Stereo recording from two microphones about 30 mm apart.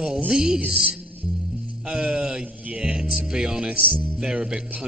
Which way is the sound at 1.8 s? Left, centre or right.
Right.